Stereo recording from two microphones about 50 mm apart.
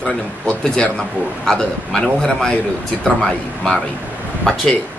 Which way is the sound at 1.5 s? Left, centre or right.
Centre.